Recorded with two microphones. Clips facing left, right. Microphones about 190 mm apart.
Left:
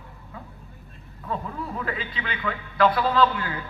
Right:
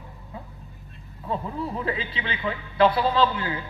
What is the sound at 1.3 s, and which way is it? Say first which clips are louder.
A man's voice: right 2 dB; 25° right (ahead or behind).